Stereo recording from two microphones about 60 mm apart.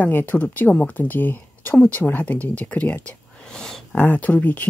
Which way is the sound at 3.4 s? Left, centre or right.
Centre.